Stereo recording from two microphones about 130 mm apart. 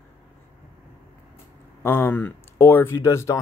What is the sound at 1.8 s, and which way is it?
Speech, 15° left (ahead or behind).